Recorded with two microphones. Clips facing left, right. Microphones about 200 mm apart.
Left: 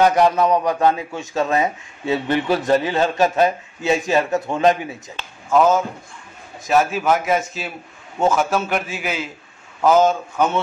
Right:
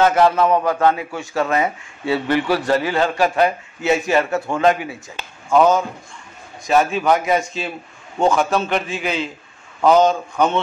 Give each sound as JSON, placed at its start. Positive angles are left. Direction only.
{"t": 0.0, "sound": "a man's voice", "side_deg": 15}
{"t": 5.5, "sound": "a man's voice", "side_deg": 0}